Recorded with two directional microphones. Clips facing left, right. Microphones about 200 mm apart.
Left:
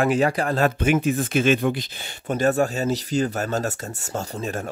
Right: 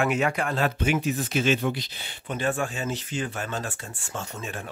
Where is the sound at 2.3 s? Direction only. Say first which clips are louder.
Left 7 dB; 40° left (ahead or behind).